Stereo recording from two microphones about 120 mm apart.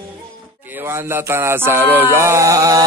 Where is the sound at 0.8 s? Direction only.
20° right (ahead or behind).